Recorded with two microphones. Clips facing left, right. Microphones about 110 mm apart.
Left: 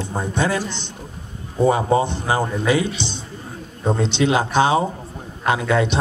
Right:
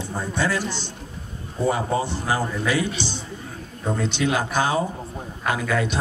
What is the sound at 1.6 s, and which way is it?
A man's voice, 20° left (ahead or behind).